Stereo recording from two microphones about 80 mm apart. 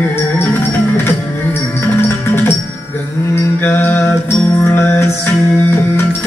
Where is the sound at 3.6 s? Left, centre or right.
Left.